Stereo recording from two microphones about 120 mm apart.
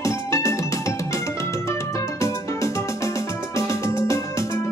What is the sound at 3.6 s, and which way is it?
Music, 25° left (ahead or behind).